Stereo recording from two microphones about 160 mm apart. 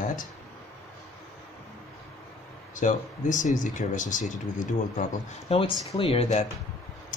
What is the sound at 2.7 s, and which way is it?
Speech, 50° left (ahead or behind).